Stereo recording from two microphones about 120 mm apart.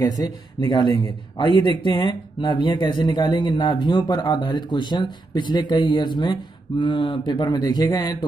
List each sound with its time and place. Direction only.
0.0 s speech: 35° left (ahead or behind)
7.4 s speech: 35° left (ahead or behind)